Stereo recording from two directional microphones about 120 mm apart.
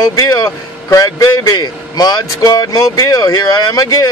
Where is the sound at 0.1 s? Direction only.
30° left (ahead or behind).